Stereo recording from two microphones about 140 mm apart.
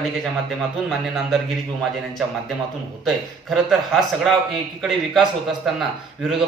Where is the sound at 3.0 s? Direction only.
Centre (ahead or behind).